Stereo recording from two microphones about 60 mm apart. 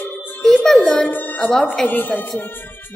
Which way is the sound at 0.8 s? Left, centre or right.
Left.